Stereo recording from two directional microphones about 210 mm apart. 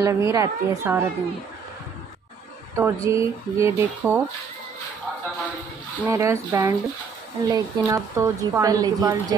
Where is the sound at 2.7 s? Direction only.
15° right (ahead or behind).